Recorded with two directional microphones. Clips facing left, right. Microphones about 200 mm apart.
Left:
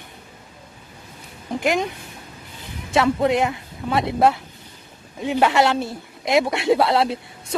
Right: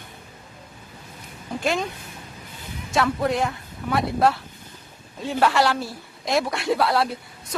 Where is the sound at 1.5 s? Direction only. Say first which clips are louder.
Left 3 dB; 15° left (ahead or behind).